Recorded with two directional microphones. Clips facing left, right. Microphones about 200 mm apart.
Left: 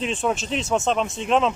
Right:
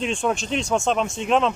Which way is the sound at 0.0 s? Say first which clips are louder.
Right 1 dB; 5° left (ahead or behind).